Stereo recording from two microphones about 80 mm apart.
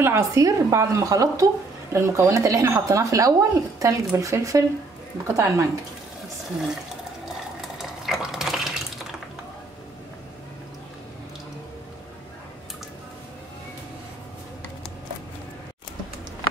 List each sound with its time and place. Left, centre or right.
0.0 s a woman's voice: right
7.8 s water: centre